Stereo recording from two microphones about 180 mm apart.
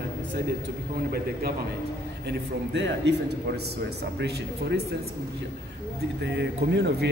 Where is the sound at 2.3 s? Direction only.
75° right (ahead or behind).